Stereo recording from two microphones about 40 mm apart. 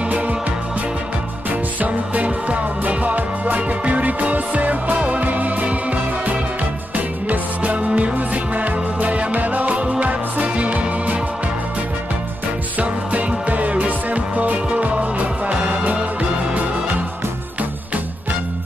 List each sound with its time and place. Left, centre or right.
0.0 s music: right
1.5 s music: right
12.7 s music: right